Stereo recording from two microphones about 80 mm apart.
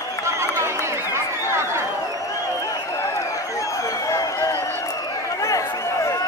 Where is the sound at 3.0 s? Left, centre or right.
Left.